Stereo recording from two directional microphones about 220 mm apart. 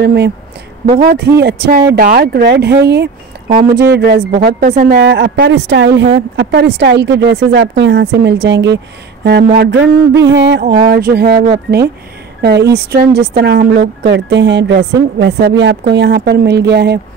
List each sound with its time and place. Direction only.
0.0 s speech: 50° right (ahead or behind)